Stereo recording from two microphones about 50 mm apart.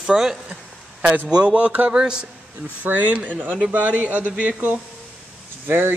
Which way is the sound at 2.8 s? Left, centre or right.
Right.